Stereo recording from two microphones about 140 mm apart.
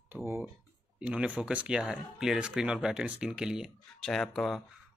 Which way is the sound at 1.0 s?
10° right (ahead or behind).